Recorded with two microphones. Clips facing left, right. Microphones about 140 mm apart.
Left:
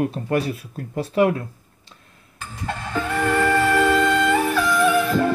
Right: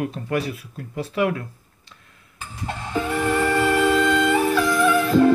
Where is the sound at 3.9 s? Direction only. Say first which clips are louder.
Even; 50° left (ahead or behind).